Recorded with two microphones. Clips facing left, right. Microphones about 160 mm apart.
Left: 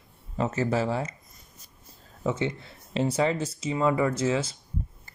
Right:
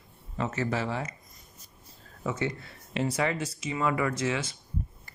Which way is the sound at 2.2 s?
25° left (ahead or behind).